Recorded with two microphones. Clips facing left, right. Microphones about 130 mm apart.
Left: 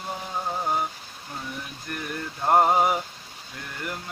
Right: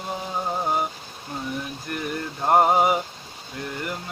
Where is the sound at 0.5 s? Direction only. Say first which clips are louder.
Right 2 dB; 15° right (ahead or behind).